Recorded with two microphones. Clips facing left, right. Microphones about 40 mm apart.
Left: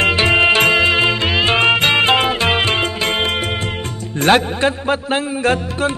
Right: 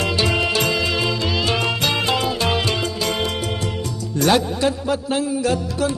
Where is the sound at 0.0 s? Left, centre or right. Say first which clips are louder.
Left 7 dB; left.